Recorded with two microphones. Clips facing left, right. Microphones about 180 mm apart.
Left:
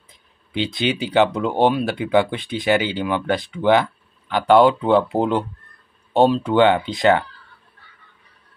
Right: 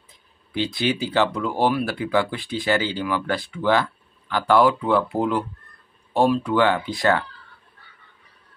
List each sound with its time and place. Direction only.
0.5 s speech: 20° left (ahead or behind)